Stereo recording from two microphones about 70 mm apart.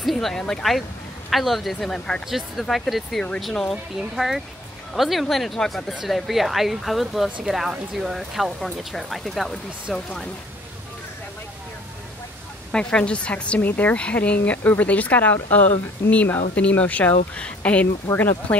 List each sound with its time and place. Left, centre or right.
0.0 s speech: centre
2.2 s speech: centre
2.6 s speech: centre
12.7 s speech: centre